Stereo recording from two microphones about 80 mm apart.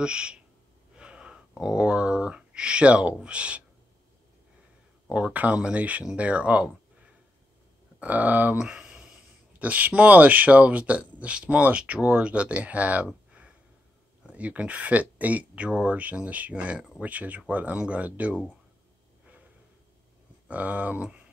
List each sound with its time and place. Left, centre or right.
0.0 s speech: centre
0.9 s wheeze: centre
1.6 s speech: centre
5.1 s speech: centre
8.0 s speech: centre
20.4 s speech: centre